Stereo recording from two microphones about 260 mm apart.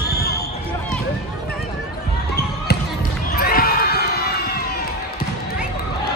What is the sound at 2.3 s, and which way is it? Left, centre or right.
Basketball bounce, left.